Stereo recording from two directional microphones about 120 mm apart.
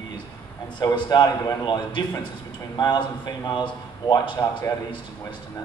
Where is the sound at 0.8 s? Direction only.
35° left (ahead or behind).